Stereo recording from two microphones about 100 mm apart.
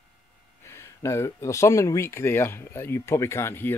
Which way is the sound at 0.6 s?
30° left (ahead or behind).